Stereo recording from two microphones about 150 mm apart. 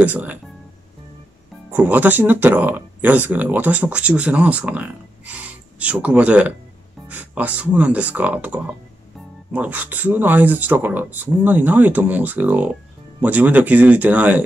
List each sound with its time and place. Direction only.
0.0 s speech: 10° right (ahead or behind)
1.7 s speech: 10° right (ahead or behind)